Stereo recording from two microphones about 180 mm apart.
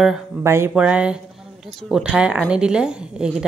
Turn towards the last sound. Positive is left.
turn(degrees=-5)  # may be behind; listen again after turning